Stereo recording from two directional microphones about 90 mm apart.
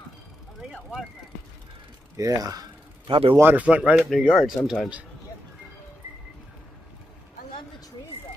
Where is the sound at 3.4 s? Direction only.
15° right (ahead or behind).